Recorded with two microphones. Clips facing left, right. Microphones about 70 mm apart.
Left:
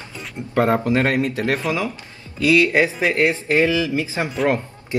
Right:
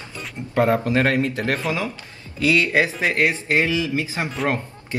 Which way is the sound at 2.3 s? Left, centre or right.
Right.